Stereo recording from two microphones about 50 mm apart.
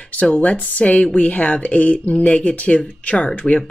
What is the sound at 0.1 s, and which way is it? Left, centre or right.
Speech, left.